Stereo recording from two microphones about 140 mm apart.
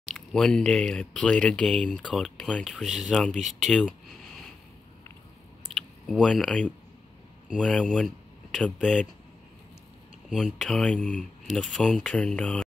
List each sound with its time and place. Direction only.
0.0 s speech: 5° left (ahead or behind)
5.8 s speech: 5° left (ahead or behind)
10.3 s speech: 5° left (ahead or behind)